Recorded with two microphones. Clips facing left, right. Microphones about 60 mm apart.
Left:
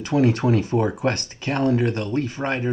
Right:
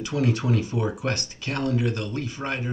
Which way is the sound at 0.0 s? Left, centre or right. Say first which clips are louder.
Left 6 dB; left.